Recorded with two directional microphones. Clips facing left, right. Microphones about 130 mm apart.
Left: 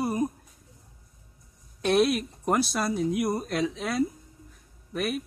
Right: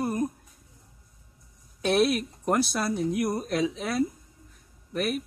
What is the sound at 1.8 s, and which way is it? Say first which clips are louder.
Speech: even; centre (ahead or behind).